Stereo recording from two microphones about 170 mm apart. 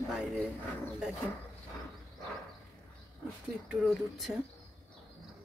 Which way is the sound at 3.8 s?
Centre (ahead or behind).